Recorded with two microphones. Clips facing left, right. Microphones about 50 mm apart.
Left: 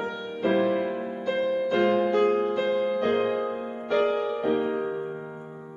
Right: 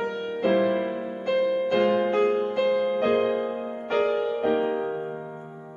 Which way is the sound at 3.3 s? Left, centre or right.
Centre.